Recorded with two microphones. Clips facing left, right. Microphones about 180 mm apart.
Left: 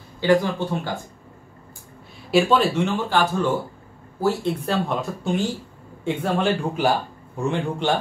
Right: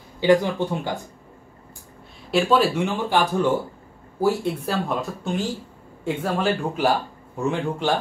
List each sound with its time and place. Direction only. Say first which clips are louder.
0.2 s speech: right 1 dB; 15° right (ahead or behind)
2.3 s a man's voice: left 1 dB; centre (ahead or behind)